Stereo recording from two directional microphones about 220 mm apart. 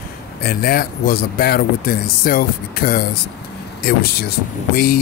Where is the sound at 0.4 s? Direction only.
45° left (ahead or behind).